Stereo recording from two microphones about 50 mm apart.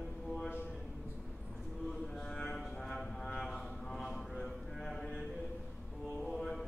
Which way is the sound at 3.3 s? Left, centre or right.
Centre.